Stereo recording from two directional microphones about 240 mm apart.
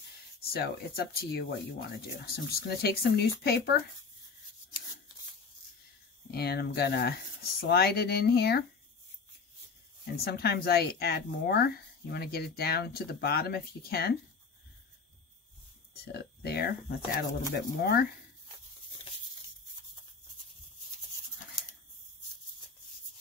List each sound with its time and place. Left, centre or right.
0.4 s speech: left
6.3 s speech: left
10.1 s speech: left
16.1 s speech: left